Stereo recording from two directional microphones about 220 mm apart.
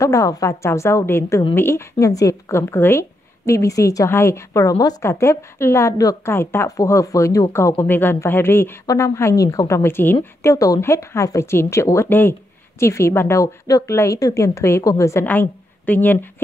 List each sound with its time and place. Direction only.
0.0 s speech: 15° left (ahead or behind)